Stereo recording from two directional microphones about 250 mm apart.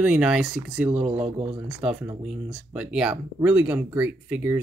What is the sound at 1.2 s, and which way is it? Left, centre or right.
Speech, centre.